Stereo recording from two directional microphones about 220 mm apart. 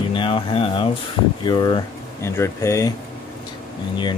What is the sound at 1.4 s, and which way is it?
Speech, 20° left (ahead or behind).